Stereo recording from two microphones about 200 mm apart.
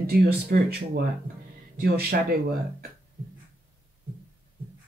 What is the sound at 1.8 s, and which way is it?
Speech, 50° right (ahead or behind).